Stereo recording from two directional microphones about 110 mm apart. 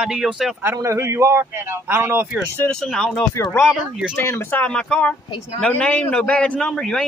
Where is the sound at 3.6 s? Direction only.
5° right (ahead or behind).